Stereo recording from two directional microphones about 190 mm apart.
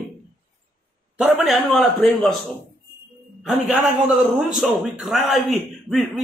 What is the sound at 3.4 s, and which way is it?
A man's voice, centre (ahead or behind).